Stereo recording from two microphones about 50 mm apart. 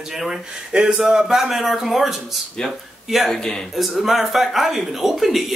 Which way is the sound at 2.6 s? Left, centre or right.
Centre.